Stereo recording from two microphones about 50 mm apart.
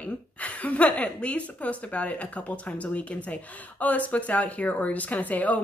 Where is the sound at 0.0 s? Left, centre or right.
Left.